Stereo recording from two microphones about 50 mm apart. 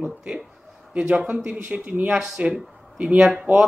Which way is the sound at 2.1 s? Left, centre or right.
Centre.